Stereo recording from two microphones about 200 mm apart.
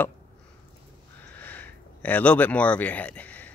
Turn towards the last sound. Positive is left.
turn(degrees=5)  # may be behind; listen again after turning